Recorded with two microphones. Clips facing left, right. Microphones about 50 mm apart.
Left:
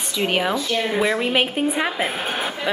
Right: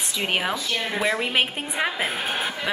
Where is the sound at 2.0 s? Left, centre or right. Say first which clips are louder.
Left 2 dB; left.